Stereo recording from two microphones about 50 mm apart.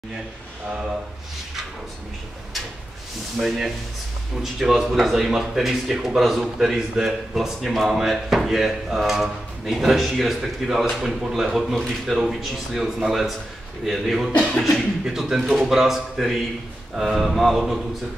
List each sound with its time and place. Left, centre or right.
3.3 s speech: centre
14.3 s beatboxing: centre
15.0 s speech: centre